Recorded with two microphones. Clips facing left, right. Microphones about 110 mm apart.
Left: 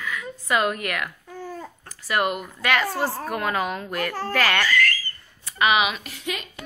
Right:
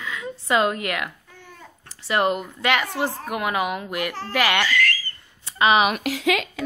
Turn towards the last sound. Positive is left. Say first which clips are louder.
# right 10 dB
turn(degrees=-90)